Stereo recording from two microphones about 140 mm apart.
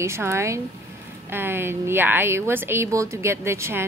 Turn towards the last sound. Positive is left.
turn(degrees=-15)  # may be behind; listen again after turning